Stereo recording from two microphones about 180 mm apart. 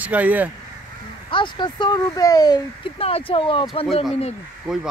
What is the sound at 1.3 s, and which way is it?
Speech, 25° left (ahead or behind).